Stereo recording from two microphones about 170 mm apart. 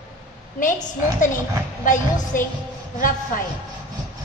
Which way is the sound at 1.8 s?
50° left (ahead or behind).